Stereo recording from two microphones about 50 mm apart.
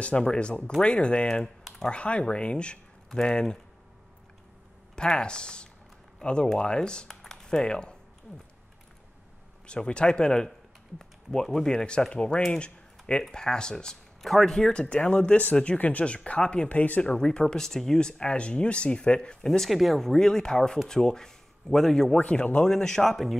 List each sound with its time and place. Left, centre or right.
0.0 s speech: left
4.9 s speech: centre
7.2 s typing: centre
9.7 s speech: centre
11.7 s speech: centre
12.5 s a sound: left
13.3 s speech: centre
15.8 s speech: left
17.0 s speech: centre
19.4 s speech: centre
22.2 s speech: left
22.7 s speech: centre